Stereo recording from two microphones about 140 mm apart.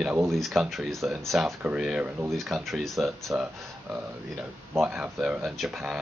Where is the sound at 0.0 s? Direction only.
15° right (ahead or behind).